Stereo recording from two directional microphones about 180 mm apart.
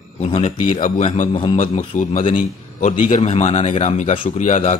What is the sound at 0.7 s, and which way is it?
A man's voice, 45° left (ahead or behind).